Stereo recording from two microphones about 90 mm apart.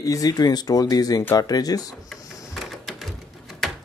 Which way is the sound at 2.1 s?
Centre (ahead or behind).